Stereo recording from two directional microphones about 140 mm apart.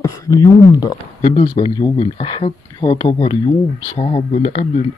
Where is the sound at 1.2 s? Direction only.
45° left (ahead or behind).